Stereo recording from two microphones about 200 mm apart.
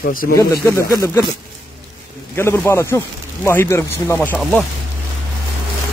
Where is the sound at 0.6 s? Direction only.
15° left (ahead or behind).